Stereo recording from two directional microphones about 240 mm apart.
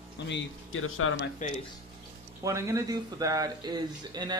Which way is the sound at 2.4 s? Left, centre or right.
Centre.